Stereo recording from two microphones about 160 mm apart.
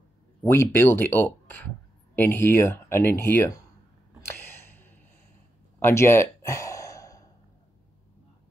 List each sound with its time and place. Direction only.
0.7 s speech: 15° left (ahead or behind)
4.4 s a sound: 15° left (ahead or behind)
5.8 s sigh: 15° left (ahead or behind)